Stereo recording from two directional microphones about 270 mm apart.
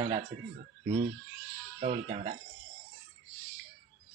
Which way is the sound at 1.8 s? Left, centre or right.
Right.